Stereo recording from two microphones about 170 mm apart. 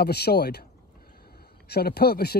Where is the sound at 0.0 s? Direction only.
70° left (ahead or behind).